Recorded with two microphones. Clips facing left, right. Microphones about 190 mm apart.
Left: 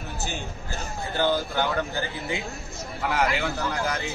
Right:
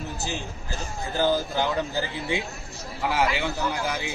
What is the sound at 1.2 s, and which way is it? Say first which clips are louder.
Speech: right 1 dB; 40° right (ahead or behind).